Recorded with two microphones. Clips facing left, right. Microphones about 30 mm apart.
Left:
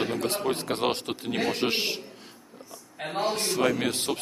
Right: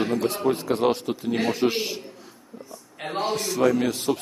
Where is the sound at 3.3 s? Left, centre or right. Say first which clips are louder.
Right 6 dB; left.